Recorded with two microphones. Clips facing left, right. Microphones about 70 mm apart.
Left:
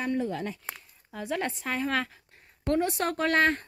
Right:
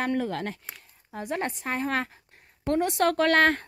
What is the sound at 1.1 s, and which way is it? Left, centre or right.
Speech, right.